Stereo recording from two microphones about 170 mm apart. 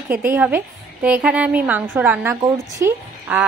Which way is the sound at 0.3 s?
10° right (ahead or behind).